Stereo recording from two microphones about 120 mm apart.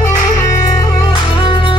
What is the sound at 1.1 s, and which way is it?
Music, 45° left (ahead or behind).